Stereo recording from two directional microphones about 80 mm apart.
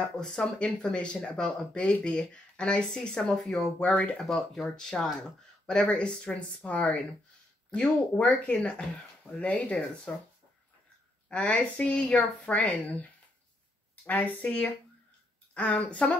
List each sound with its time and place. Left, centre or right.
0.2 s speech: centre
11.2 s speech: centre
14.0 s speech: centre